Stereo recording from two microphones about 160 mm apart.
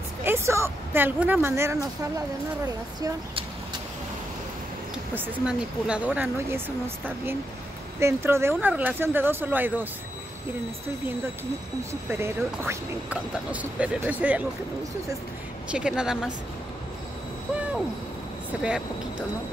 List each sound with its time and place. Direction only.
0.2 s speech: 15° right (ahead or behind)
5.1 s speech: 10° right (ahead or behind)
8.0 s speech: 15° right (ahead or behind)
11.9 s speech: 15° right (ahead or behind)
15.7 s speech: 5° right (ahead or behind)